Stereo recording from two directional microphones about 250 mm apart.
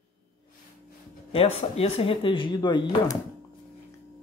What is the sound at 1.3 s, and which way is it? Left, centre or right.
Speech, left.